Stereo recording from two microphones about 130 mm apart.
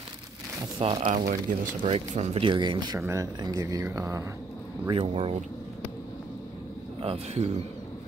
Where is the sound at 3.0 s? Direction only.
20° right (ahead or behind).